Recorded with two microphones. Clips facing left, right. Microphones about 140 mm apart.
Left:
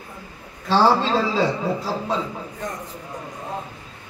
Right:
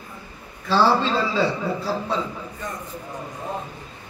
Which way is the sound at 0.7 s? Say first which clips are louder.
Left 1 dB; 40° left (ahead or behind).